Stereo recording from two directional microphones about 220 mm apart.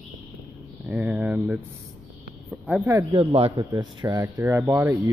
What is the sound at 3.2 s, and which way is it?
Speech, 25° right (ahead or behind).